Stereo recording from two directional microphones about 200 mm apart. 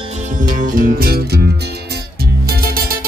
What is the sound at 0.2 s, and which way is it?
Music, 40° right (ahead or behind).